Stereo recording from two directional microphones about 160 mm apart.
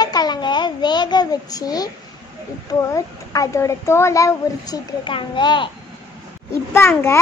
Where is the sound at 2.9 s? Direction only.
20° left (ahead or behind).